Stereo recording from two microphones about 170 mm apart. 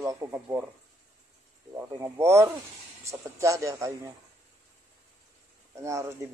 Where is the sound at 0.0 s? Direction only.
15° right (ahead or behind).